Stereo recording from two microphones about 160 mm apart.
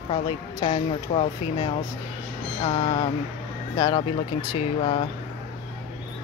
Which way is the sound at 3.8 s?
25° left (ahead or behind).